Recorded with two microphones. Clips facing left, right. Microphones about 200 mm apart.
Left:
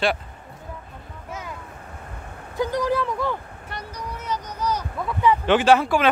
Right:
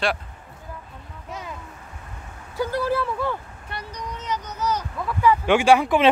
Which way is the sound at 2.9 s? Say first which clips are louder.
Left 1 dB; 10° right (ahead or behind).